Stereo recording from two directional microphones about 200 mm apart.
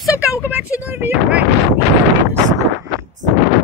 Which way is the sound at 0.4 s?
10° right (ahead or behind).